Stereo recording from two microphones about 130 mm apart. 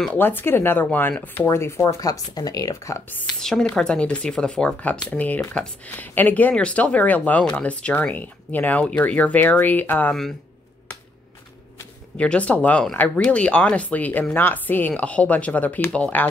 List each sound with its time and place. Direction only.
0.1 s speech: 15° left (ahead or behind)
3.3 s speech: 5° left (ahead or behind)
12.2 s speech: 10° left (ahead or behind)